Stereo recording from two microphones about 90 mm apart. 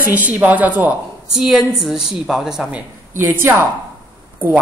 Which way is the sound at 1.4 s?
5° right (ahead or behind).